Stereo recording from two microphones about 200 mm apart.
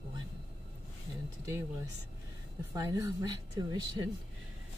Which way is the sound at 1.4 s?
15° right (ahead or behind).